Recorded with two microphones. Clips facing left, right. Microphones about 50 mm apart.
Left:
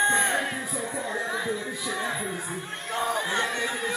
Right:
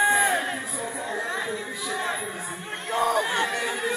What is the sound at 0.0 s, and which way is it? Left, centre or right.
Music, right.